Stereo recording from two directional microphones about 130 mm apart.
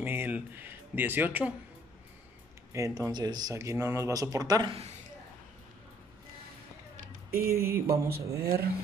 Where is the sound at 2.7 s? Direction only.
25° right (ahead or behind).